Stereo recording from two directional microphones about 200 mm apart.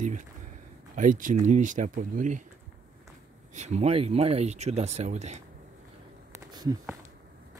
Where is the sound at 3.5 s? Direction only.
35° right (ahead or behind).